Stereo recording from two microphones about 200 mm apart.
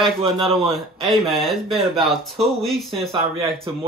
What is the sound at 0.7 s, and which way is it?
Speech, centre (ahead or behind).